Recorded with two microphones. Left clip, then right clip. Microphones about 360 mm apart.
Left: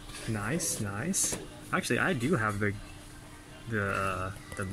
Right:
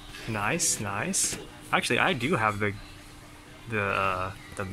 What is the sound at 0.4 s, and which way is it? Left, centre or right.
Speech, centre.